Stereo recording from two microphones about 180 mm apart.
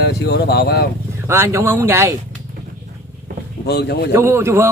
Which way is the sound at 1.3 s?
15° right (ahead or behind).